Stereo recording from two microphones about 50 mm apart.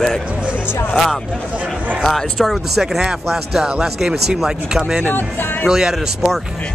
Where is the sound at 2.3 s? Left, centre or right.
Centre.